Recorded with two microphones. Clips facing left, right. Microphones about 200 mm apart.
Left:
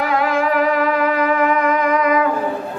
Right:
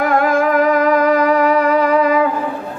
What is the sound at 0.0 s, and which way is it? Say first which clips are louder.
Music: right 4 dB; 50° right (ahead or behind).